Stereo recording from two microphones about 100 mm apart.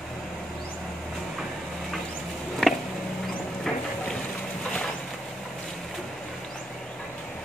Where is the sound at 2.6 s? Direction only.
5° left (ahead or behind).